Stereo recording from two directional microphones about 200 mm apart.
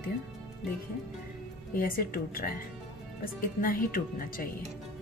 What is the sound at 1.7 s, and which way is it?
A woman's voice, 45° left (ahead or behind).